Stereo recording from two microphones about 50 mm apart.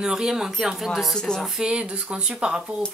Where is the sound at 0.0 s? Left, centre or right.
Centre.